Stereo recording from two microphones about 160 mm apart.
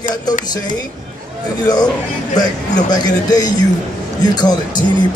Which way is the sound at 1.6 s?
25° left (ahead or behind).